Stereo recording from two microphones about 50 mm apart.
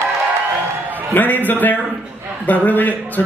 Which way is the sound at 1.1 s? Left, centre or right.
Left.